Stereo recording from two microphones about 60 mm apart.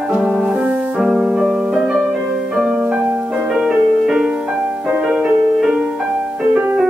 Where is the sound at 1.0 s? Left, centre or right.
Centre.